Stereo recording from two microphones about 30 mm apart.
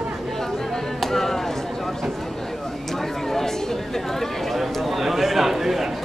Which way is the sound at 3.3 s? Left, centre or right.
Centre.